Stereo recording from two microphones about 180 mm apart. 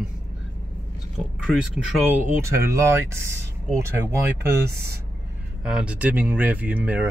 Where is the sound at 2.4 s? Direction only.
15° right (ahead or behind).